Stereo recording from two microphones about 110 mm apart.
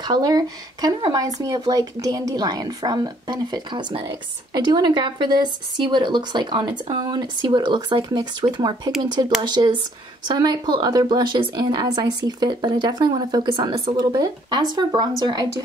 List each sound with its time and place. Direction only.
0.0 s a woman's voice: 35° right (ahead or behind)